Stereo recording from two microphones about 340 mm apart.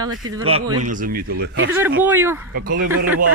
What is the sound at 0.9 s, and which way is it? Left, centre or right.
Speech, right.